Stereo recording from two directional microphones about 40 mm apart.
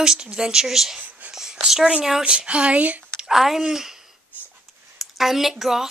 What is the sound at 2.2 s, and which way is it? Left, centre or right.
Speech, right.